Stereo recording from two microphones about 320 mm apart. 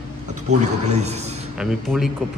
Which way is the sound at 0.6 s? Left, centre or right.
Right.